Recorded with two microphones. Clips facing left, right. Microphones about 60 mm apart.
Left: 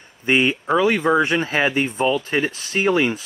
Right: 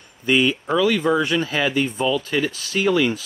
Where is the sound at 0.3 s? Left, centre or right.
Left.